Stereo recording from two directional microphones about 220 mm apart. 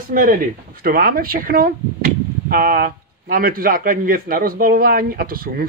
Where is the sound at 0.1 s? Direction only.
40° right (ahead or behind).